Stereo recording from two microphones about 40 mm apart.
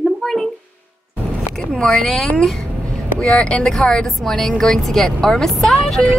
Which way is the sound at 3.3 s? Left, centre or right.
Left.